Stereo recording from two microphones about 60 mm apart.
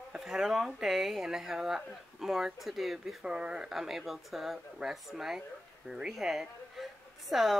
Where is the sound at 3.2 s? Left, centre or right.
Centre.